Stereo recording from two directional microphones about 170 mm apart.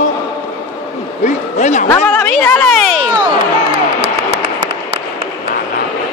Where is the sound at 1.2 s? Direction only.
45° left (ahead or behind).